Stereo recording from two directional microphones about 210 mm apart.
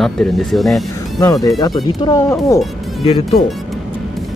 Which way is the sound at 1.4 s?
15° left (ahead or behind).